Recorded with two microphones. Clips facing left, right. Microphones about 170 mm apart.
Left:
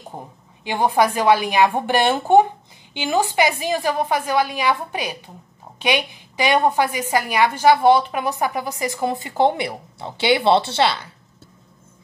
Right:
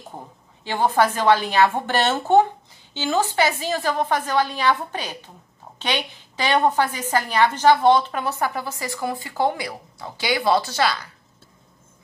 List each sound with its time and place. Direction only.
0.7 s a woman's voice: 15° left (ahead or behind)